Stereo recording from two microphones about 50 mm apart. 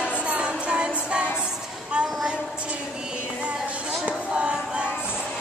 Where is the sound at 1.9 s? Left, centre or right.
Right.